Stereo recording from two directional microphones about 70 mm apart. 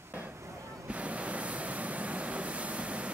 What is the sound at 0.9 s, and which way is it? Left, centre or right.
Vehicle, centre.